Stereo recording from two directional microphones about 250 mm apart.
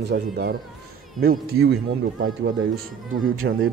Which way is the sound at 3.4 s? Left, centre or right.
Right.